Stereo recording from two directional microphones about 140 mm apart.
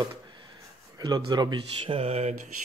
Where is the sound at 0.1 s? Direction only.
35° right (ahead or behind).